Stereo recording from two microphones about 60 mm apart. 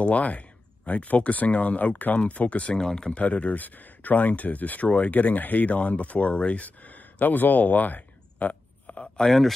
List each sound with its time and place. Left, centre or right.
0.0 s speech: left
9.0 s speech: centre